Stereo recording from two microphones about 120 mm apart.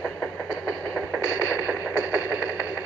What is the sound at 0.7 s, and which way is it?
Music, 5° right (ahead or behind).